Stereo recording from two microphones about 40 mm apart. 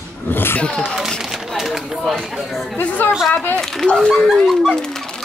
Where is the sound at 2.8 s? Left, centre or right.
Left.